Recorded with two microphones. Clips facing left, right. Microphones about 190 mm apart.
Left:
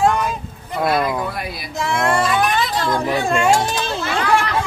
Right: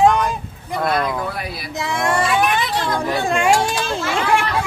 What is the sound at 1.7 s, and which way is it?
Speech, 15° right (ahead or behind).